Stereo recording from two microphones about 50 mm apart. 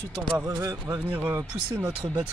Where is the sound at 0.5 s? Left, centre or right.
Right.